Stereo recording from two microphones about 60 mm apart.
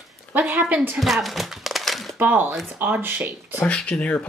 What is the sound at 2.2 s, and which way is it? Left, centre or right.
Speech, right.